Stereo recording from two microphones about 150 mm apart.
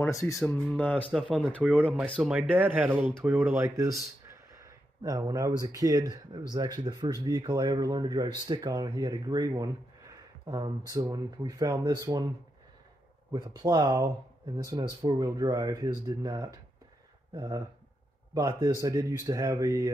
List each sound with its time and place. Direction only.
0.0 s speech: 20° left (ahead or behind)
0.4 s speech: 10° left (ahead or behind)
1.6 s speech: centre (ahead or behind); by 4.0 s 20° right (ahead or behind)
4.6 s a sound: 20° right (ahead or behind)
5.6 s speech: 25° right (ahead or behind)
13.3 s speech: 25° right (ahead or behind)